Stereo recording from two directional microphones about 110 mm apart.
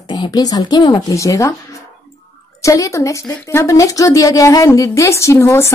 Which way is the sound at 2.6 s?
30° left (ahead or behind).